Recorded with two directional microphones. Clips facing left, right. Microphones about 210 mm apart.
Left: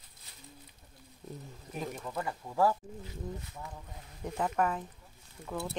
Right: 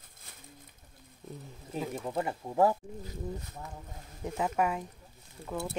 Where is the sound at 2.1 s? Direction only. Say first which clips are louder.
Right 4 dB; 25° right (ahead or behind).